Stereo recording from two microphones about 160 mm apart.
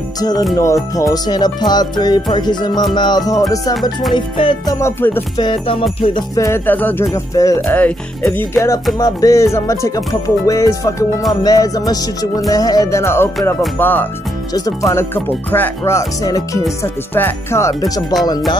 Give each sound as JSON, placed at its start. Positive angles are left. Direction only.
{"t": 0.2, "sound": "music", "side_deg": 25}
{"t": 4.7, "sound": "speech", "side_deg": 15}
{"t": 5.4, "sound": "music", "side_deg": 30}
{"t": 6.3, "sound": "speech", "side_deg": 15}
{"t": 7.3, "sound": "music", "side_deg": 20}
{"t": 7.6, "sound": "speech", "side_deg": 10}
{"t": 8.9, "sound": "music", "side_deg": 20}
{"t": 13.7, "sound": "speech", "side_deg": 10}
{"t": 16.2, "sound": "music", "side_deg": 20}